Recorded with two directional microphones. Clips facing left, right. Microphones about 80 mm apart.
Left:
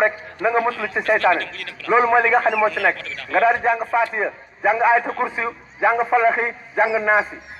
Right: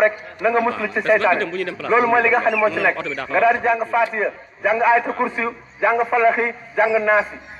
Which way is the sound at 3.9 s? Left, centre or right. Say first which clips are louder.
Right 1 dB; centre.